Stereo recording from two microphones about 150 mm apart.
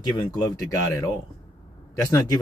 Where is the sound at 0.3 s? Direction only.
25° left (ahead or behind).